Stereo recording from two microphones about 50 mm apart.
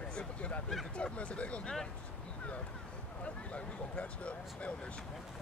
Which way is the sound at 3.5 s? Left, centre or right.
Left.